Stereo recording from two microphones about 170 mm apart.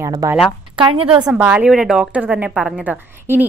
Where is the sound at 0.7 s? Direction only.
30° right (ahead or behind).